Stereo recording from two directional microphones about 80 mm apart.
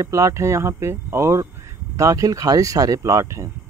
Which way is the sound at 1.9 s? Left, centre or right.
Right.